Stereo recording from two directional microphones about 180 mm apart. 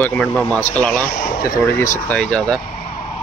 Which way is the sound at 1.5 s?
15° left (ahead or behind).